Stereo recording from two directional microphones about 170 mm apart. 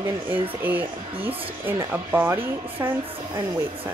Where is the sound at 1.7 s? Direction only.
15° right (ahead or behind).